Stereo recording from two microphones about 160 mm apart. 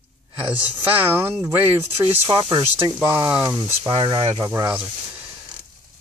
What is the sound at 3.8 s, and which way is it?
Speech, 25° right (ahead or behind).